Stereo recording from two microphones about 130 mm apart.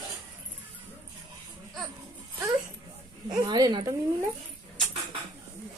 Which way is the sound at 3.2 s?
30° right (ahead or behind).